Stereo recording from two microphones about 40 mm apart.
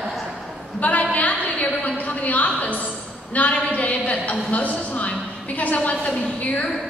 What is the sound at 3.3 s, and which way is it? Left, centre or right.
A woman's voice, left.